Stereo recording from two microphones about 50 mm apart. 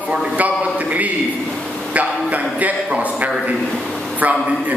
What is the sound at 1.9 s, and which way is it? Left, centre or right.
A man's voice, right.